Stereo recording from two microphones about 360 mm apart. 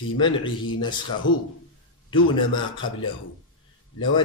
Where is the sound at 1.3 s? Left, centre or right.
Left.